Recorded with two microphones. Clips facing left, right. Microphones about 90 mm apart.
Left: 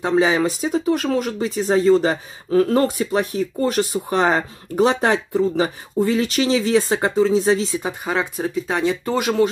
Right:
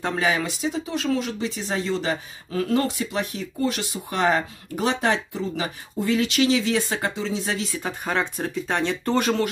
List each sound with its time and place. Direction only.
0.0 s speech: 20° left (ahead or behind)
0.5 s speech: 40° left (ahead or behind)
7.8 s speech: 10° left (ahead or behind)